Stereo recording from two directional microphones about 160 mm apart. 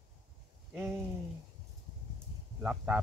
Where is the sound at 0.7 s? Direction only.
15° right (ahead or behind).